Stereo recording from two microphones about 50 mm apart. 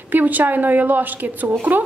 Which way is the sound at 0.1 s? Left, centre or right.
Right.